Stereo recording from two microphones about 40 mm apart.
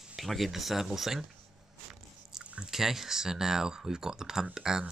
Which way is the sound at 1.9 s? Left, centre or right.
Centre.